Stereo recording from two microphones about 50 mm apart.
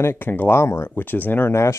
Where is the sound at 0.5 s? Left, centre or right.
Left.